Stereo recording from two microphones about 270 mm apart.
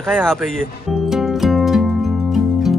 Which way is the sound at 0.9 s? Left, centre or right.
Centre.